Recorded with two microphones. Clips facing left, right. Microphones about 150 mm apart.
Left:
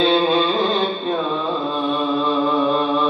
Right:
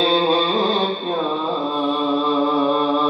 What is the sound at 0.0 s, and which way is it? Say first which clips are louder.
Music: left 1 dB; 30° right (ahead or behind).